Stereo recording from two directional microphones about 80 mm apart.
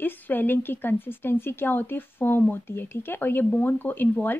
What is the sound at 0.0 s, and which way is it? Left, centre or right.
Speech, left.